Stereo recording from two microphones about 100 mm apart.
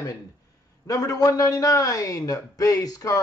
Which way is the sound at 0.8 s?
35° left (ahead or behind).